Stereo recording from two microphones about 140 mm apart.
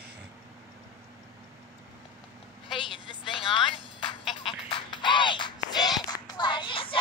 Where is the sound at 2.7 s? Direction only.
Centre (ahead or behind).